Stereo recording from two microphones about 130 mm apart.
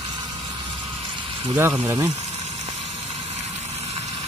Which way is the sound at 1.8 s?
25° right (ahead or behind).